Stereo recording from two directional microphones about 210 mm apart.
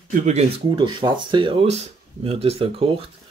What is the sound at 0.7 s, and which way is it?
Speech, 20° right (ahead or behind).